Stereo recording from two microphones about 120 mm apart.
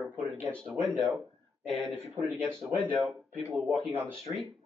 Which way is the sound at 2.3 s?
10° left (ahead or behind).